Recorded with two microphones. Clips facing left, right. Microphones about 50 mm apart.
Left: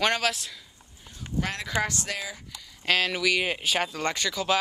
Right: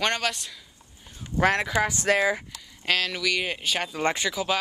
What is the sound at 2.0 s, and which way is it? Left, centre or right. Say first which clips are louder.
Speech: right 12 dB; right.